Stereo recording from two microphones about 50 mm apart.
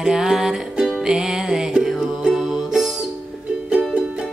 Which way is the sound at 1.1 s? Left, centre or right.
Centre.